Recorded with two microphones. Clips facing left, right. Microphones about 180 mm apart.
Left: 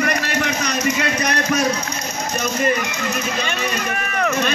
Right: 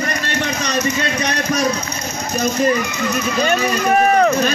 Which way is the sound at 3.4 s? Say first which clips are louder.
Right 7 dB; 45° right (ahead or behind).